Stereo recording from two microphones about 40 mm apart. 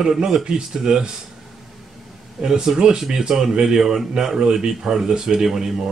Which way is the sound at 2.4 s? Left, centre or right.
Centre.